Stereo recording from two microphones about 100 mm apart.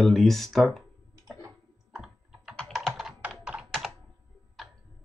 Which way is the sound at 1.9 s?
5° right (ahead or behind).